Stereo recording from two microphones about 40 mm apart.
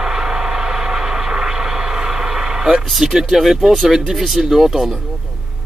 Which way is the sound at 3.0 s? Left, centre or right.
Centre.